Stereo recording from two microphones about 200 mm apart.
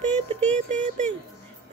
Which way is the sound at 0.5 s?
35° right (ahead or behind).